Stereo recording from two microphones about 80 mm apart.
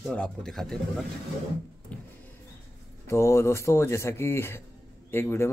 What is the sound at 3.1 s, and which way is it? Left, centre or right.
Speech, left.